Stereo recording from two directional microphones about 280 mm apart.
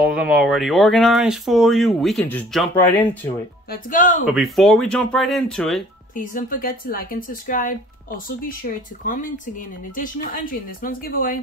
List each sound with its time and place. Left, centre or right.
0.0 s speech: centre
3.7 s speech: left
4.3 s speech: centre
6.1 s speech: left
9.0 s speech: left